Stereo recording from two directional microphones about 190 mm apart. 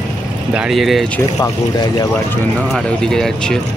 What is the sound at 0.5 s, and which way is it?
Speech, 5° right (ahead or behind).